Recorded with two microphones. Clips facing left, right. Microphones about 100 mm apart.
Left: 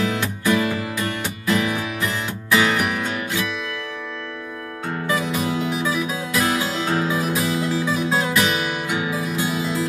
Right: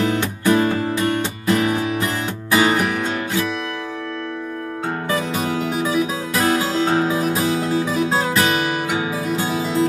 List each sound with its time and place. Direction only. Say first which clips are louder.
0.0 s music: right 3 dB; 35° right (ahead or behind)
5.7 s music: right 3 dB; 40° right (ahead or behind)